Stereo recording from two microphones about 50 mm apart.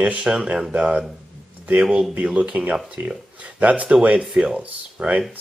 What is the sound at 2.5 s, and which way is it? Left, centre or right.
Speech, right.